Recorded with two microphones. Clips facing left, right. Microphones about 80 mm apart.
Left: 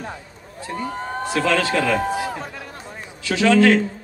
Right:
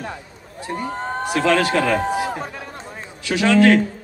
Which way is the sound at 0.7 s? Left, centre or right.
Right.